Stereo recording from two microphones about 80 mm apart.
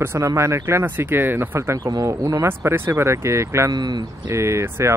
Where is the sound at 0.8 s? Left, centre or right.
Right.